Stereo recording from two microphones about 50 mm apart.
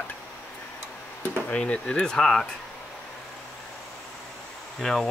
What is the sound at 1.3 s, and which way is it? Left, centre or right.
Speech, left.